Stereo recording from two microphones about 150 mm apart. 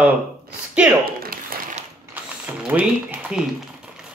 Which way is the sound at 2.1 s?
10° right (ahead or behind).